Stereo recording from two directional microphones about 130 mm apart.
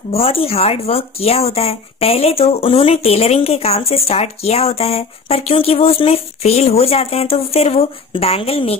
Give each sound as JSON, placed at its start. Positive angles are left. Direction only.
{"t": 0.1, "sound": "speech", "side_deg": 50}